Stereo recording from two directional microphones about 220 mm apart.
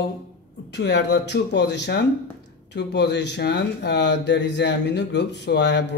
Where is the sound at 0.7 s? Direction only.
50° left (ahead or behind).